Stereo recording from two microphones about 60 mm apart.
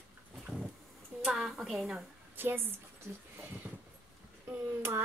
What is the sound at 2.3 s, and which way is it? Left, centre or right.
Speech, right.